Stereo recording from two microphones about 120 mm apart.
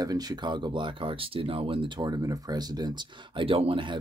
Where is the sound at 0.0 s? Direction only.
30° right (ahead or behind).